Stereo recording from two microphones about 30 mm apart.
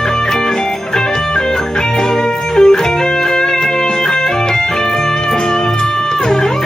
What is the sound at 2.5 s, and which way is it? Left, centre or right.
Music, left.